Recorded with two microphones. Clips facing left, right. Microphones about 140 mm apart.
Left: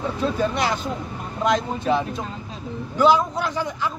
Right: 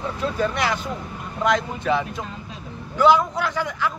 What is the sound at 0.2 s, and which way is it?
Speech, 20° left (ahead or behind).